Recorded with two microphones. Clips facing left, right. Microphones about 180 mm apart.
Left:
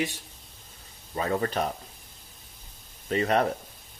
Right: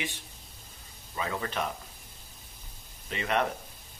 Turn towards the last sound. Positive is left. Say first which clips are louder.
# left 5 dB
turn(degrees=40)  # may be behind; listen again after turning